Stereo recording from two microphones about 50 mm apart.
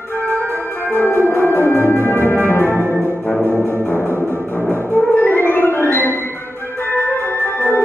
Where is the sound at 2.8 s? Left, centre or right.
Right.